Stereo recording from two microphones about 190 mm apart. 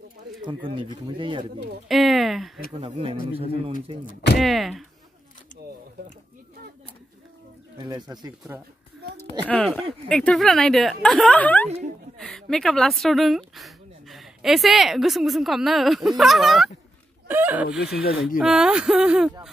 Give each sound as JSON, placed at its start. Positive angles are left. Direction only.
{"t": 0.7, "sound": "speech", "side_deg": -25}
{"t": 1.9, "sound": "speech", "side_deg": 0}
{"t": 2.8, "sound": "speech", "side_deg": -30}
{"t": 4.4, "sound": "speech", "side_deg": 0}
{"t": 7.8, "sound": "speech", "side_deg": -20}
{"t": 9.4, "sound": "speech", "side_deg": 5}